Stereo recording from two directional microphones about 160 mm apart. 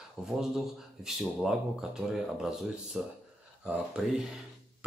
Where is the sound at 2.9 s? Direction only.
Centre (ahead or behind).